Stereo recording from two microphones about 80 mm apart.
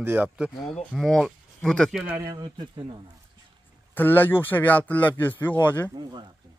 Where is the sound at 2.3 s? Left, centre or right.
Right.